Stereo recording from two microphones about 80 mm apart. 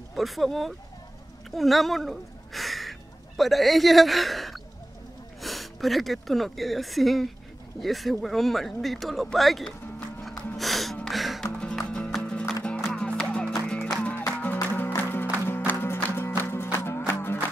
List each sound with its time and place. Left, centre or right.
0.1 s speech: centre
10.2 s music: centre
12.1 s music: centre
14.4 s music: left